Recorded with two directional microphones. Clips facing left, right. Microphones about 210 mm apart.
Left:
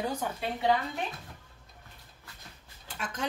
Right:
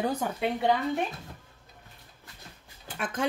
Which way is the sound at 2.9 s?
55° right (ahead or behind).